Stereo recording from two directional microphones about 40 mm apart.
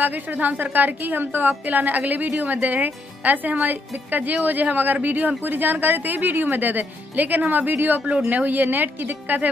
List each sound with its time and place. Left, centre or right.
0.0 s speech: right
1.5 s speech: right